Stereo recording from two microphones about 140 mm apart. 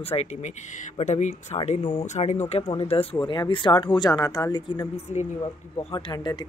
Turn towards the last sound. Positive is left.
turn(degrees=30)  # may be behind; listen again after turning